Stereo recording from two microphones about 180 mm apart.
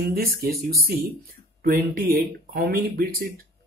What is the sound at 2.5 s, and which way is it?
Speech, 55° right (ahead or behind).